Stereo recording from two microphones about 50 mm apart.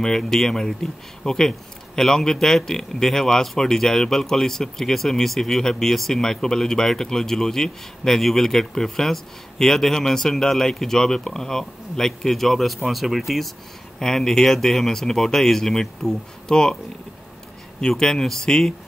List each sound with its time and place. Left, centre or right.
0.0 s a man's voice: centre
13.9 s a man's voice: centre
17.7 s a man's voice: centre